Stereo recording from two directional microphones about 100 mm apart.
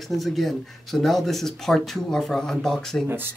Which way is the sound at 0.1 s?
Centre (ahead or behind).